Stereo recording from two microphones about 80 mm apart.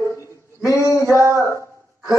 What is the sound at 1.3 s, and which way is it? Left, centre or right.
Speech, left.